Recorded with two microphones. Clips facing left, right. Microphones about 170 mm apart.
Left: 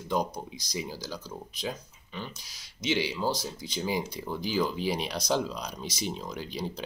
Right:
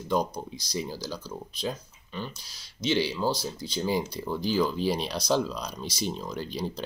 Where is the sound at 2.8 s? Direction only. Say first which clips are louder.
Right 2 dB; 15° left (ahead or behind).